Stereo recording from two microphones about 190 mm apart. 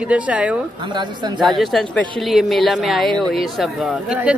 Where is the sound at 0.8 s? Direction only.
25° right (ahead or behind).